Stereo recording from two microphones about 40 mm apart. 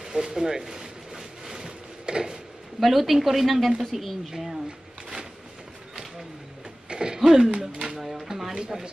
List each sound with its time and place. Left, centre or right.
0.0 s a sound: centre
2.8 s a woman's voice: centre
6.9 s throat clearing: centre
7.2 s speech: centre
8.0 s a woman's voice: centre